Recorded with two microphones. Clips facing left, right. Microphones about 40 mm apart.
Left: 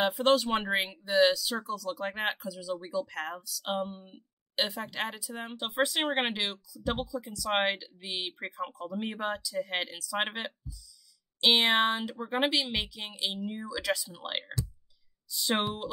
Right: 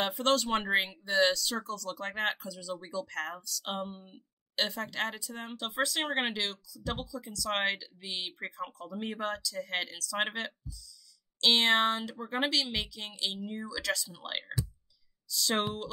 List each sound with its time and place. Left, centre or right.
0.0 s speech: centre